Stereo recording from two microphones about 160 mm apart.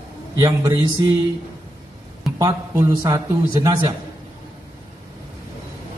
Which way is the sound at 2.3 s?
20° right (ahead or behind).